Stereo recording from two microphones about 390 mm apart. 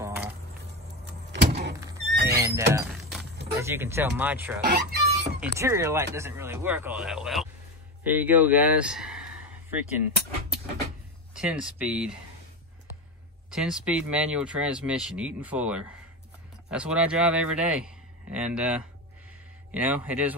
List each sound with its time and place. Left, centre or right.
0.0 s vehicle: centre
1.3 s power windows: right
1.8 s music: centre
2.7 s a sound: centre
3.5 s speech: centre
4.6 s a sound: right
5.6 s speech: centre
9.7 s a sound: centre
11.3 s speech: centre
13.5 s speech: centre